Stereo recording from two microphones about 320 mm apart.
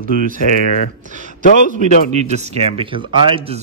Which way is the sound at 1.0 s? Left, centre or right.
Right.